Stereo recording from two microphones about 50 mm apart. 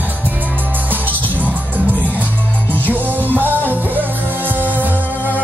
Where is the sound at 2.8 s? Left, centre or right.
Right.